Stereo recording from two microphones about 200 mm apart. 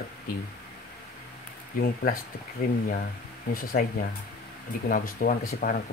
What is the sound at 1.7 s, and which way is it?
Speech, 45° left (ahead or behind).